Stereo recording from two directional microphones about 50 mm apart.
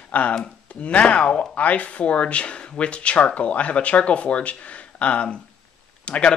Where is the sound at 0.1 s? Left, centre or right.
Left.